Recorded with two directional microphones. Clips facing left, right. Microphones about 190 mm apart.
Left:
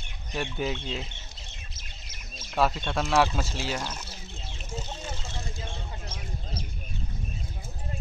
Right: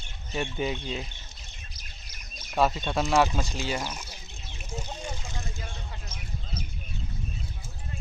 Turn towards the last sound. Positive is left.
turn(degrees=30)  # may be behind; listen again after turning